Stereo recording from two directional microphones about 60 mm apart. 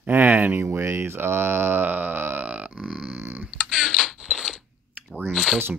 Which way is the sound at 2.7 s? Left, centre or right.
Centre.